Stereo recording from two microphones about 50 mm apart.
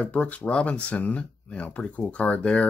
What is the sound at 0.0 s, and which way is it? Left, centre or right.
Speech, left.